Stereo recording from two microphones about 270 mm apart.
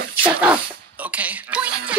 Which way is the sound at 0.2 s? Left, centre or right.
Centre.